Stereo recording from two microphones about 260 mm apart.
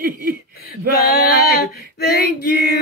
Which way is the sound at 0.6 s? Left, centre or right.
Left.